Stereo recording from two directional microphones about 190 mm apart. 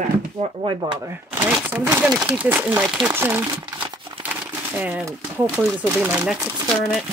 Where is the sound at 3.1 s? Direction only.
10° right (ahead or behind).